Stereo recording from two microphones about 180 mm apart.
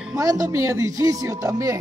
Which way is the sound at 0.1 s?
20° right (ahead or behind).